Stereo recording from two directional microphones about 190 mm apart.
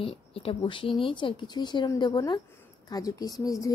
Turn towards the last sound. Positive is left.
turn(degrees=20)  # may be behind; listen again after turning